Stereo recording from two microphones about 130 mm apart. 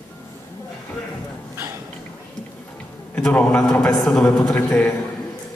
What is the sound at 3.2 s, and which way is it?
A man's voice, 5° left (ahead or behind).